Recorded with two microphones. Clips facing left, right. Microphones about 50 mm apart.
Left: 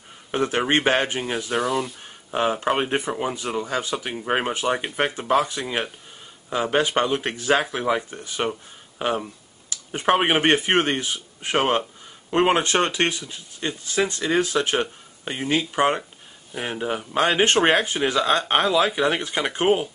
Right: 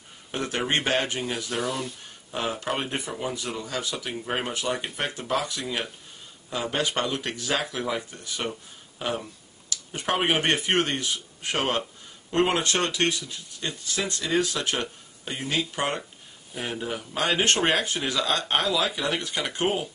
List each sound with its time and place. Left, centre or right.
0.3 s speech: left
1.6 s speech: centre
2.3 s speech: left